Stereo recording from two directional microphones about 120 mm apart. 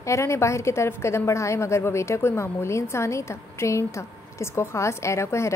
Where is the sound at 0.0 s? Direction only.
25° left (ahead or behind).